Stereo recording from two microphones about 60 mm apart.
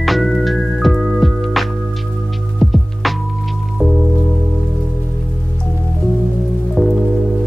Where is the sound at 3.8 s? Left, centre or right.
Right.